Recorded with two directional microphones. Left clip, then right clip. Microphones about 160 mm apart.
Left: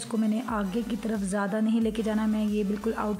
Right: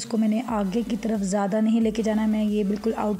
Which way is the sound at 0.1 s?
15° right (ahead or behind).